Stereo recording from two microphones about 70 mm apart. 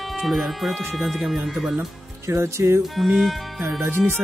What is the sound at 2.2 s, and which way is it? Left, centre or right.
Speech, right.